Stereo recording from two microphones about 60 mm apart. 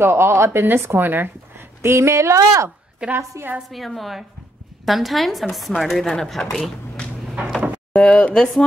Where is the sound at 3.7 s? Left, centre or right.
Centre.